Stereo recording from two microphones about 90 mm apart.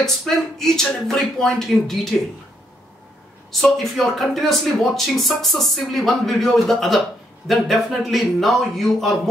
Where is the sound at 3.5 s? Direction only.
Centre (ahead or behind).